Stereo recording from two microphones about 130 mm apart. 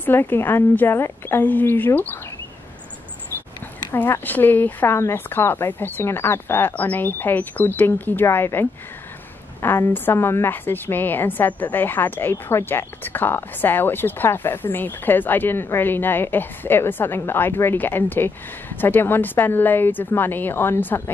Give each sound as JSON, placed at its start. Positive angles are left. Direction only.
{"t": 0.0, "sound": "a woman's voice", "side_deg": 15}
{"t": 3.9, "sound": "a woman's voice", "side_deg": 15}